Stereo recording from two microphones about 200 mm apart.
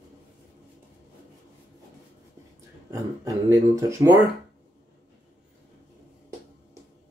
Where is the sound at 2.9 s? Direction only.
15° right (ahead or behind).